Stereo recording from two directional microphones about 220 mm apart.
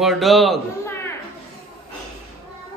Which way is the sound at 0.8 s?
10° left (ahead or behind).